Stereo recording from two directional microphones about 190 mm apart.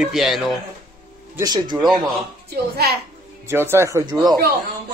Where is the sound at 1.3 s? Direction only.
20° right (ahead or behind).